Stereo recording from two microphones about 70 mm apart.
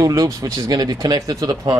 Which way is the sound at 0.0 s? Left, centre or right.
Right.